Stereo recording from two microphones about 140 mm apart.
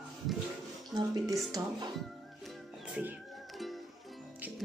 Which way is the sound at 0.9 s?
30° right (ahead or behind).